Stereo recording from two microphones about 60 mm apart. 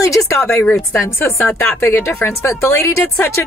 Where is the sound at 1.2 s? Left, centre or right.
Left.